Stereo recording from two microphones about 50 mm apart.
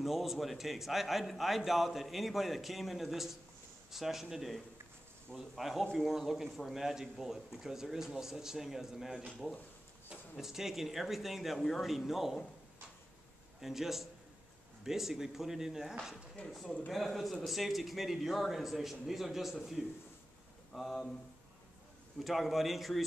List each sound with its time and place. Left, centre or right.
0.0 s a man's voice: centre
10.4 s a man's voice: centre
13.6 s a man's voice: centre
16.6 s a man's voice: left
16.9 s a man's voice: centre
20.7 s a man's voice: centre
22.2 s a man's voice: centre